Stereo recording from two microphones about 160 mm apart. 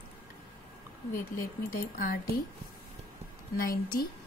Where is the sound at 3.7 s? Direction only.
65° left (ahead or behind).